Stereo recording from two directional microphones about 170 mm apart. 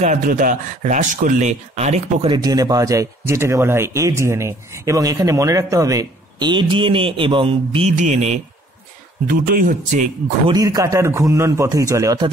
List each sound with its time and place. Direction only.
0.0 s speech: 50° right (ahead or behind)
2.2 s a man's voice: 25° right (ahead or behind)
7.9 s speech: 45° right (ahead or behind)
9.3 s speech: 55° right (ahead or behind)
10.5 s a man's voice: 20° right (ahead or behind)